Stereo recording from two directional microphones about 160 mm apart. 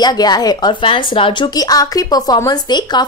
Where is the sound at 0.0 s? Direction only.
25° left (ahead or behind).